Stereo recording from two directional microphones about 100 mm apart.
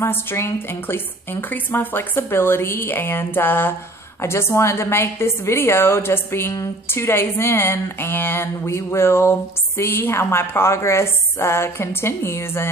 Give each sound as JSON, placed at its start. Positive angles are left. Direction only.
{"t": 0.0, "sound": "a woman's voice", "side_deg": 25}